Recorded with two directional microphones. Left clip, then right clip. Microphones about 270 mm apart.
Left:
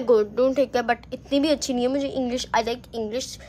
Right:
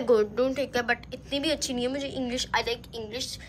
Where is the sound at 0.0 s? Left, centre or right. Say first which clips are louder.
Left 4 dB; centre.